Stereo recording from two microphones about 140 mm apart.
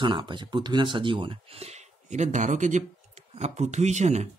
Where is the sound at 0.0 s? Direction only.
35° right (ahead or behind); by 4.3 s 55° right (ahead or behind).